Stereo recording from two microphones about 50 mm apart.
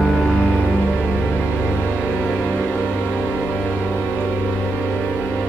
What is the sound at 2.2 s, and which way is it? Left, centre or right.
Music, left.